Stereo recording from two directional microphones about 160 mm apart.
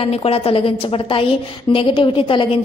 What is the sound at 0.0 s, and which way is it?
A woman's voice, 40° left (ahead or behind).